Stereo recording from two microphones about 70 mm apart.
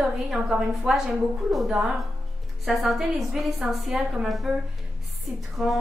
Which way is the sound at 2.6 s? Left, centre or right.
Centre.